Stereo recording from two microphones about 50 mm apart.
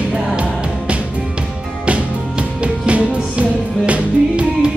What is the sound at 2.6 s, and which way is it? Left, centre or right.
Music, right.